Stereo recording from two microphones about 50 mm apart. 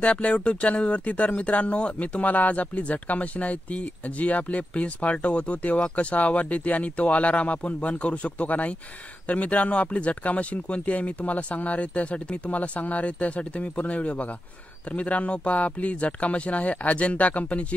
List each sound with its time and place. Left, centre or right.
0.0 s speech: left